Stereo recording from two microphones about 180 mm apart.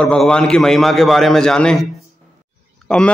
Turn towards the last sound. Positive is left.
turn(degrees=5)  # may be behind; listen again after turning